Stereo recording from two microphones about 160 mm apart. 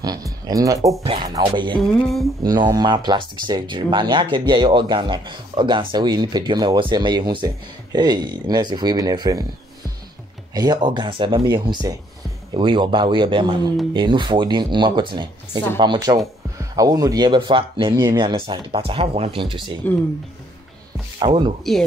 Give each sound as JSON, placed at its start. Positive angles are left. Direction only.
{"t": 0.0, "sound": "speech", "side_deg": -20}
{"t": 1.8, "sound": "a sound", "side_deg": 0}
{"t": 2.4, "sound": "speech", "side_deg": -25}
{"t": 10.5, "sound": "speech", "side_deg": -25}
{"t": 21.2, "sound": "speech", "side_deg": -30}